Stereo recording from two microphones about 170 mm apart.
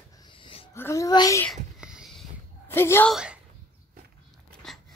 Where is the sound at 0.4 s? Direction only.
30° left (ahead or behind).